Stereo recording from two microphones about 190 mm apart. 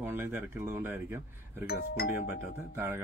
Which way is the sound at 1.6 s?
55° left (ahead or behind).